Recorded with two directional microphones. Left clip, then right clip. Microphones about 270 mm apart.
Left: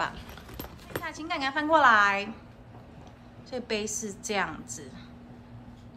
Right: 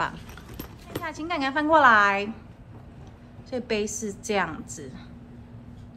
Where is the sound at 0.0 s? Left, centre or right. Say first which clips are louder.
Right 3 dB; centre.